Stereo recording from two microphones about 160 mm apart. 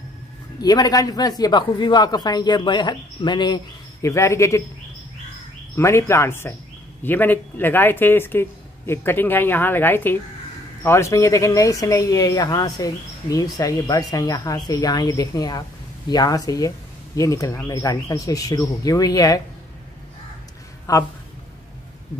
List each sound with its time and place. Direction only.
0.6 s speech: 25° left (ahead or behind)
5.8 s speech: 15° left (ahead or behind)
20.9 s speech: 20° left (ahead or behind)